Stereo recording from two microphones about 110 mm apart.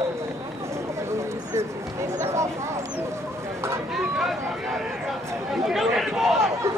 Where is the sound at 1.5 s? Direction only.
25° right (ahead or behind).